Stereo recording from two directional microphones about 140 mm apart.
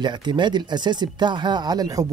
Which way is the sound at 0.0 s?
35° right (ahead or behind).